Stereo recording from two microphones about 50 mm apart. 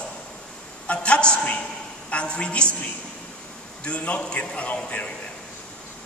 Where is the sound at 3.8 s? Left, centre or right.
Left.